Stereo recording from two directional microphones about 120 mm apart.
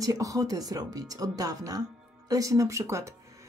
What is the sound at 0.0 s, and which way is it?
Speech, 30° right (ahead or behind).